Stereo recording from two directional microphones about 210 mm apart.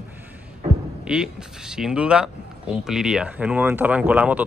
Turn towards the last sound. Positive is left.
turn(degrees=-5)  # may be behind; listen again after turning